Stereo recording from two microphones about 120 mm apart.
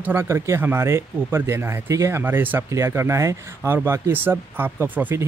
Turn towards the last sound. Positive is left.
turn(degrees=-15)  # may be behind; listen again after turning